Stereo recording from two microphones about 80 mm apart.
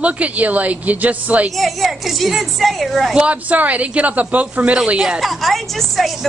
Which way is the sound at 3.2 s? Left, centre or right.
Centre.